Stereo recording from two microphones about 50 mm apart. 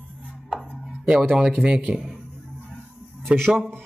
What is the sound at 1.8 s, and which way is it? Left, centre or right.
Speech, centre.